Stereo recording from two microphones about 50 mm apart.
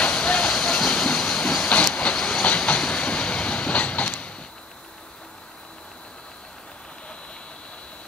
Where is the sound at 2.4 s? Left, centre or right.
Left.